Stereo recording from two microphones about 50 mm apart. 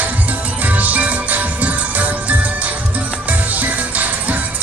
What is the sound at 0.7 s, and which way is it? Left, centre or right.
Music, right.